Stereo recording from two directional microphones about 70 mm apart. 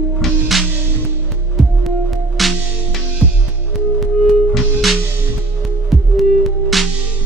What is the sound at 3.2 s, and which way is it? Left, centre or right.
Music, centre.